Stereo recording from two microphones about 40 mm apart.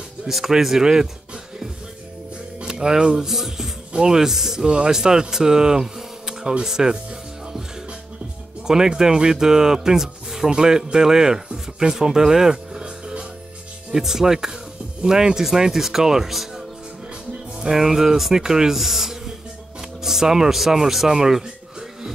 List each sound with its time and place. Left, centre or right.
0.3 s speech: centre
2.6 s speech: centre
8.6 s speech: centre